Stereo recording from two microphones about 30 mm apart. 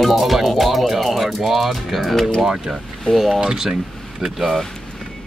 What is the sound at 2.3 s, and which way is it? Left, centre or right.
Speech, right.